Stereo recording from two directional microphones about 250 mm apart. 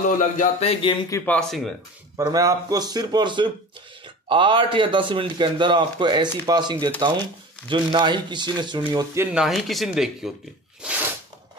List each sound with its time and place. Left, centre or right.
0.0 s speech: left
1.1 s speech: centre
2.1 s a man's voice: centre
10.8 s sneeze: centre